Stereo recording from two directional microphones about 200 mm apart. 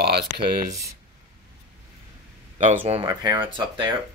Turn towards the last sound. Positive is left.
turn(degrees=-25)  # may be behind; listen again after turning